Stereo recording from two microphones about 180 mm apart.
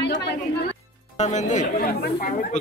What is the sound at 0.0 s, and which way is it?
Music, 70° left (ahead or behind).